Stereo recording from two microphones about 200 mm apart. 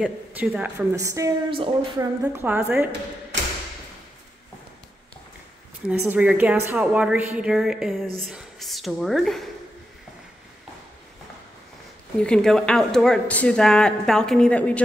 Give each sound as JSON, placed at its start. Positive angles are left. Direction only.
{"t": 0.0, "sound": "a woman's voice", "side_deg": -5}
{"t": 2.2, "sound": "a woman's voice", "side_deg": -10}
{"t": 5.9, "sound": "speech", "side_deg": -5}
{"t": 12.2, "sound": "speech", "side_deg": 5}